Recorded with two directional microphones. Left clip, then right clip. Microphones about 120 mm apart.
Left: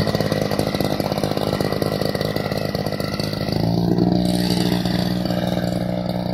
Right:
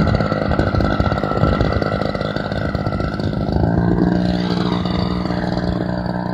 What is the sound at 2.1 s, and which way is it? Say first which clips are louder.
Chainsaw: right 1 dB; 35° left (ahead or behind).